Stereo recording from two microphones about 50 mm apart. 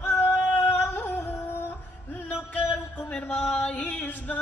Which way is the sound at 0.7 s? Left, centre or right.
Left.